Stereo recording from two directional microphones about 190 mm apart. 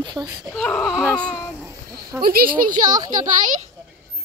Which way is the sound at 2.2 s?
50° right (ahead or behind).